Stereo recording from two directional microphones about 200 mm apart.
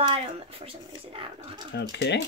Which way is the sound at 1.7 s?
60° left (ahead or behind).